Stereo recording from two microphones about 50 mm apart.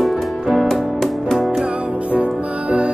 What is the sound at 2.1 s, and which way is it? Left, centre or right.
Music, right.